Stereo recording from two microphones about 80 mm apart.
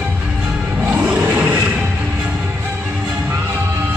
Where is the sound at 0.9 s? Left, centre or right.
Centre.